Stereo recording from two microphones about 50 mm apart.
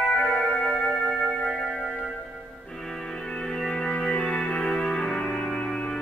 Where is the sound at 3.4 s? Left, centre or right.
Centre.